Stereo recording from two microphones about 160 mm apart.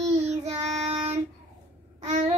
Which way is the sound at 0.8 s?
45° right (ahead or behind).